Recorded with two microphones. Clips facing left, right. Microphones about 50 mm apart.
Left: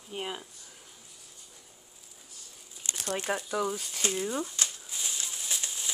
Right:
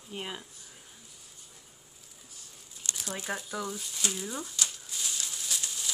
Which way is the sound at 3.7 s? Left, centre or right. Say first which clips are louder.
Left 4 dB; left.